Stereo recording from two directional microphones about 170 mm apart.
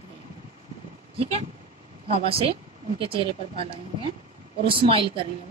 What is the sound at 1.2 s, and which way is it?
A woman's voice, 35° right (ahead or behind).